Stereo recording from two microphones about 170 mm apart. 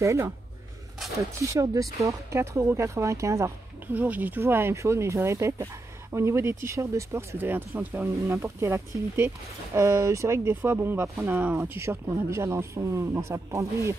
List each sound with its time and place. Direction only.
0.0 s speech: 15° right (ahead or behind)
1.5 s speech: 20° right (ahead or behind)